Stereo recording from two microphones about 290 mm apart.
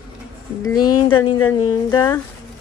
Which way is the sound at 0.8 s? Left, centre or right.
Left.